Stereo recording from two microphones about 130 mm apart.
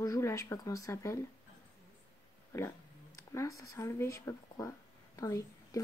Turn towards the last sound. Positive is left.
turn(degrees=25)  # may be behind; listen again after turning